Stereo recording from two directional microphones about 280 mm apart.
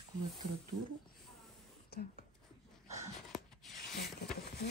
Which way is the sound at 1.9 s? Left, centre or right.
Left.